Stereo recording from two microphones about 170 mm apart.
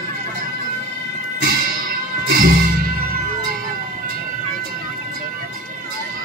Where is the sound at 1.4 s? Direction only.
60° right (ahead or behind).